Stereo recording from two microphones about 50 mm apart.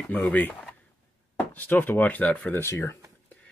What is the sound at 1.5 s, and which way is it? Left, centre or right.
Speech, left.